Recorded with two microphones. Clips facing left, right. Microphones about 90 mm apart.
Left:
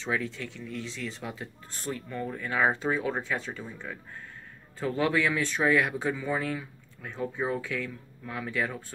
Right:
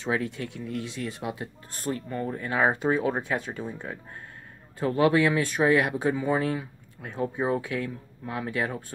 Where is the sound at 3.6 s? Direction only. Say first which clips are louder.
Right 5 dB; 25° right (ahead or behind).